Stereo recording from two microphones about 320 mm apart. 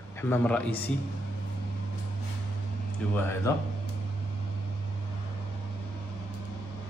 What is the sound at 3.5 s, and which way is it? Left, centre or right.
Speech, centre.